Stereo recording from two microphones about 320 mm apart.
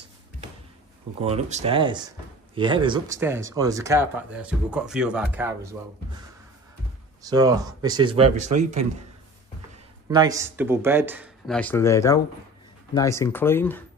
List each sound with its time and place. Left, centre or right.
1.2 s speech: centre
7.2 s a man's voice: centre
10.0 s speech: centre